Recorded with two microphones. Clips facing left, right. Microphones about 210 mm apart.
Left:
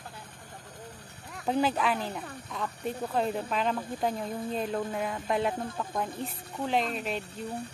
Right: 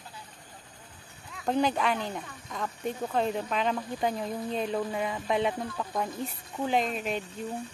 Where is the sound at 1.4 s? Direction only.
5° left (ahead or behind).